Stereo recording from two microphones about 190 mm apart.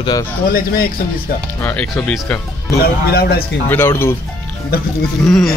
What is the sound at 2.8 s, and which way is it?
Speech, 55° left (ahead or behind).